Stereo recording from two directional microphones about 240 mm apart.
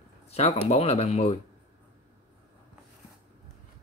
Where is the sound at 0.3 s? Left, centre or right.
Left.